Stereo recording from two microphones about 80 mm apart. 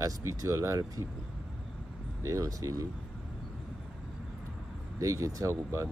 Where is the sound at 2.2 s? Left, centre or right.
Right.